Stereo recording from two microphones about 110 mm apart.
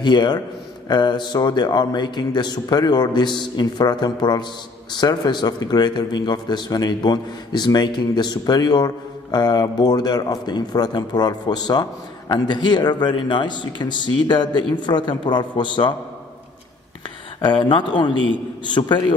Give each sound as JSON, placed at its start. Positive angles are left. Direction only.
{"t": 0.0, "sound": "a man's voice", "side_deg": 40}
{"t": 17.4, "sound": "speech", "side_deg": 45}